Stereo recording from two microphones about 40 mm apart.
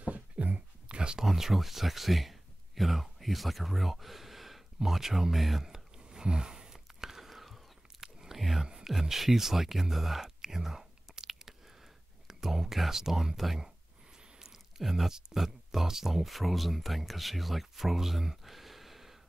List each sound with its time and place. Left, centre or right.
0.0 s dog: right
0.8 s a sound: right
1.2 s speech: centre
6.0 s whispering: right; by 7.6 s centre
8.0 s biting: centre
8.4 s a sound: centre
9.1 s speech: centre
14.4 s a sound: centre
15.3 s speech: centre